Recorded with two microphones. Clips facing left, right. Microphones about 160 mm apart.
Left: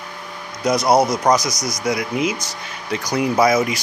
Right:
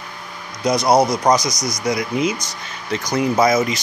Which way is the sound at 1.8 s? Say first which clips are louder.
Right 1 dB; 5° left (ahead or behind).